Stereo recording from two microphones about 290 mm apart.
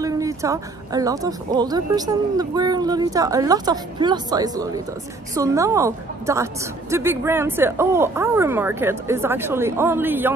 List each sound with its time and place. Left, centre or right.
0.0 s a woman's voice: centre